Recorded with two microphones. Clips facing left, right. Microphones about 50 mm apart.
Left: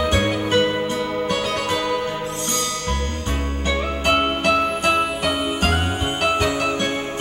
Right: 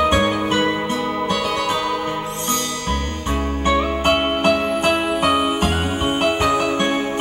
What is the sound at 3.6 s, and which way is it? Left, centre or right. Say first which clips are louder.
Music: right 4 dB; right.